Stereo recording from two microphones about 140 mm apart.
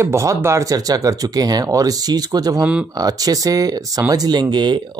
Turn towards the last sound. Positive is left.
turn(degrees=-30)  # may be behind; listen again after turning